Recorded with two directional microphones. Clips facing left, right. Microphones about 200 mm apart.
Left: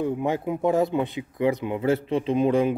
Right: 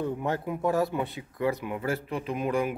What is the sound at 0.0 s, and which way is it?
A man's voice, 15° left (ahead or behind).